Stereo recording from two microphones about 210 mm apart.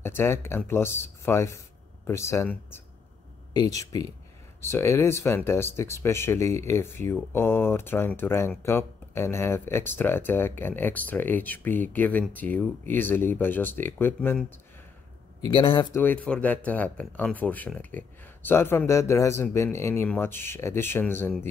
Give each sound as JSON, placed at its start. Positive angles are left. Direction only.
{"t": 0.0, "sound": "speech", "side_deg": 10}
{"t": 3.8, "sound": "speech", "side_deg": 15}
{"t": 15.5, "sound": "speech", "side_deg": 25}
{"t": 16.0, "sound": "speech", "side_deg": 5}